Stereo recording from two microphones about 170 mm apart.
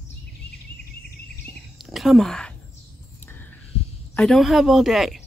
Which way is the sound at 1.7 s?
Centre (ahead or behind).